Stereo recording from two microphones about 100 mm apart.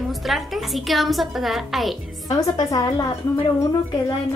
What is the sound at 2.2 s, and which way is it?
Speech, 40° left (ahead or behind).